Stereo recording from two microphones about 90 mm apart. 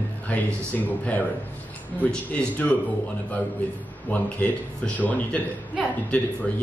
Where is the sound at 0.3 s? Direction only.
15° left (ahead or behind).